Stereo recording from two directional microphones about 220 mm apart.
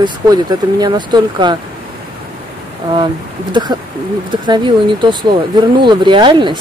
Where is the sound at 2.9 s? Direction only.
20° right (ahead or behind).